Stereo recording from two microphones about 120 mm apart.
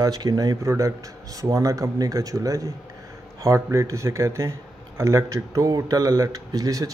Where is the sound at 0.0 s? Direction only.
35° right (ahead or behind).